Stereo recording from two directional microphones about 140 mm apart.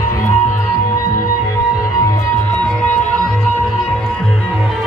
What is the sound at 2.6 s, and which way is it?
Music, 10° left (ahead or behind).